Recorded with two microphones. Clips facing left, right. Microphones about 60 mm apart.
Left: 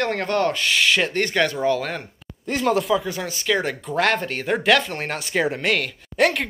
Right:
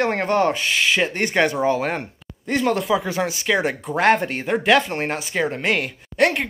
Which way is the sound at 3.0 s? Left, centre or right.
Right.